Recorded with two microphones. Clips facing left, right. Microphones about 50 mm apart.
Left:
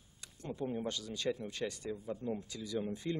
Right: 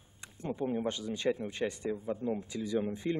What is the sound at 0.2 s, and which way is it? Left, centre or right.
A man's voice, right.